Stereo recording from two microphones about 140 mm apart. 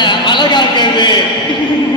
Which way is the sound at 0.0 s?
35° left (ahead or behind).